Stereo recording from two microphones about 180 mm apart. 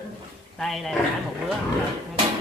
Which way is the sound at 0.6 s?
Centre (ahead or behind).